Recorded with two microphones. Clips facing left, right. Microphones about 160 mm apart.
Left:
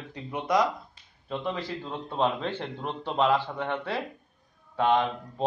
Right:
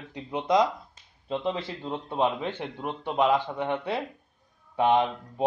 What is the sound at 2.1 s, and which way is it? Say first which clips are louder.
A man's voice: even; 15° right (ahead or behind).